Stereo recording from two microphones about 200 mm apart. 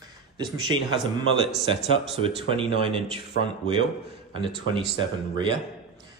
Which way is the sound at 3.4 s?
50° left (ahead or behind).